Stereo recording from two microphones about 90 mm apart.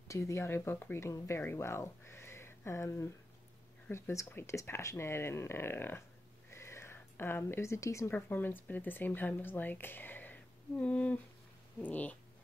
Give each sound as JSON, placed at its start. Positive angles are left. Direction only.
{"t": 0.1, "sound": "speech", "side_deg": 35}
{"t": 6.5, "sound": "a sound", "side_deg": 30}
{"t": 8.3, "sound": "speech", "side_deg": 20}